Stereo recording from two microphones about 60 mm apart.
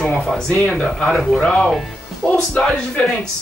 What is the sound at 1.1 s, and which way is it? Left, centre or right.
Speech, centre.